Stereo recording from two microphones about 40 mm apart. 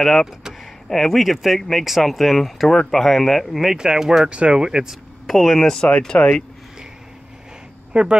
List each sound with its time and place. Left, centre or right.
0.8 s speech: centre
1.2 s speech: centre
3.7 s speech: centre
4.3 s speech: right
5.2 s speech: centre
5.6 s speech: centre
6.1 s speech: left
7.9 s speech: right